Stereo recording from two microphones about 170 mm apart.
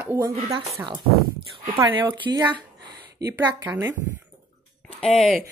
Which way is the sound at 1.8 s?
25° right (ahead or behind).